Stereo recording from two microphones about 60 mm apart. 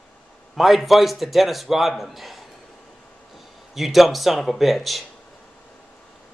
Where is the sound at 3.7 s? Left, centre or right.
Centre.